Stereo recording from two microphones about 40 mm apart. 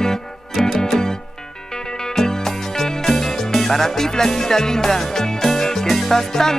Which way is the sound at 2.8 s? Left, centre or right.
Centre.